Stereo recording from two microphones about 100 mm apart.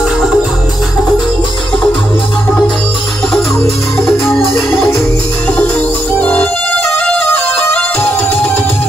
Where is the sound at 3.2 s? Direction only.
5° left (ahead or behind).